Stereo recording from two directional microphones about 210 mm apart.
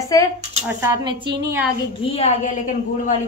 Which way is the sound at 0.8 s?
20° right (ahead or behind).